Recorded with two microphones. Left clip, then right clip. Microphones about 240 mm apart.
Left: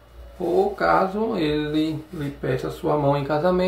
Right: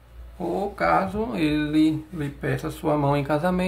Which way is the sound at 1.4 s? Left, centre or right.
Right.